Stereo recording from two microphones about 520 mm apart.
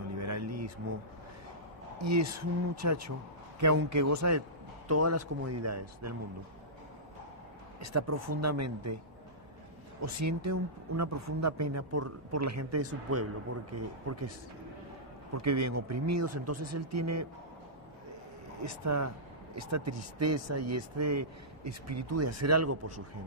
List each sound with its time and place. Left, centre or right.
0.2 s a sound: right
2.0 s a woman's voice: right
7.8 s a woman's voice: right
10.0 s a woman's voice: right
15.3 s a woman's voice: right
18.6 s speech: right